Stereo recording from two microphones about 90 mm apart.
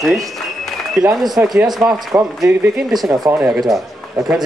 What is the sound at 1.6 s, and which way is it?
Speech, 45° right (ahead or behind).